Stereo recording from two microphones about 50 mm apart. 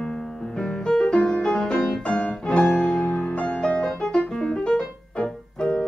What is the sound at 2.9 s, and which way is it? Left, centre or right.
Music, centre.